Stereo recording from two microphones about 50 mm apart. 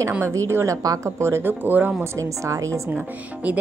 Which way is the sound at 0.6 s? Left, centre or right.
Right.